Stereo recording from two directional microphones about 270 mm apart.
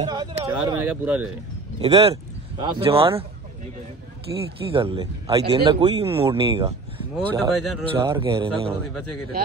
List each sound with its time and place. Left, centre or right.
0.0 s speech: centre
1.8 s speech: right
4.3 s speech: centre
6.0 s speech: centre
7.2 s speech: centre
8.1 s speech: centre